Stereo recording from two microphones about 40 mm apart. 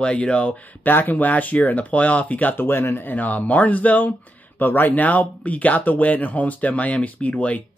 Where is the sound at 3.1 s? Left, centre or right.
Left.